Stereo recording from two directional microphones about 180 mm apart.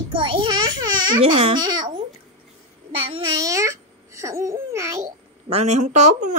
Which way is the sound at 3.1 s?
25° right (ahead or behind).